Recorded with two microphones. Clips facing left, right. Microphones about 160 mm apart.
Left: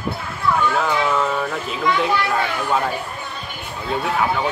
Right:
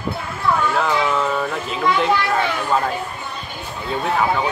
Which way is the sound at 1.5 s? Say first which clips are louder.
Right 1 dB; centre (ahead or behind).